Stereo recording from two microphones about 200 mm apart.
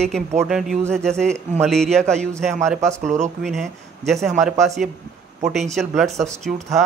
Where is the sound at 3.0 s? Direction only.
35° right (ahead or behind).